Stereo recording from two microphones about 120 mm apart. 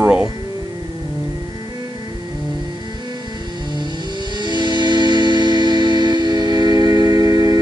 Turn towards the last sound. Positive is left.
turn(degrees=-35)  # may be behind; listen again after turning